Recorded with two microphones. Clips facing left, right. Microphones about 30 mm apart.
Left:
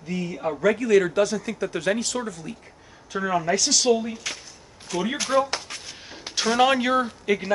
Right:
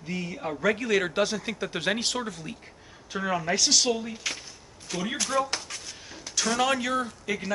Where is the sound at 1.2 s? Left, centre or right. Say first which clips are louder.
Left 4 dB; right.